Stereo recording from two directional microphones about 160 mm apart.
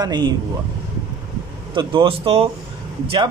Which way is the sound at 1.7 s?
35° right (ahead or behind).